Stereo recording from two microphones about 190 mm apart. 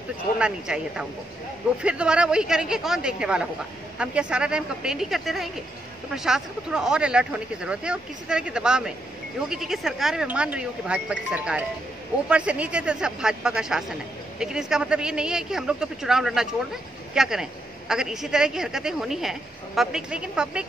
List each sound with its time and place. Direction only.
0.4 s a woman's voice: 5° right (ahead or behind)